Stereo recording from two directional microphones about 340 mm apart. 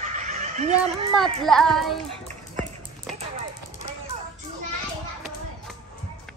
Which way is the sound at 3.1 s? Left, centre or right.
Centre.